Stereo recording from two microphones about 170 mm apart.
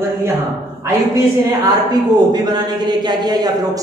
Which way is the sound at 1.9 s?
25° right (ahead or behind).